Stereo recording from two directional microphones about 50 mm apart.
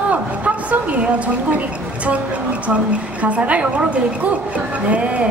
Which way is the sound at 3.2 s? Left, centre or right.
Right.